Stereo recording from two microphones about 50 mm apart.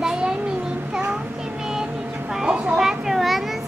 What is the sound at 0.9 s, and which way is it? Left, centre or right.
Music, right.